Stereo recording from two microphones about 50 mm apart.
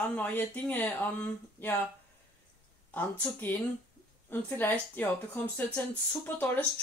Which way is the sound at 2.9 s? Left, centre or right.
Left.